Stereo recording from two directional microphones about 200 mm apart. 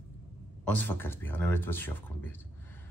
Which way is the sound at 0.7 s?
10° left (ahead or behind).